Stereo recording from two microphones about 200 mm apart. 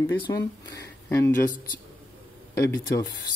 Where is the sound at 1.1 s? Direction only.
10° left (ahead or behind).